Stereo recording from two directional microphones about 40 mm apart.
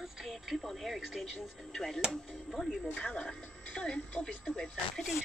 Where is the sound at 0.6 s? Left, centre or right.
Centre.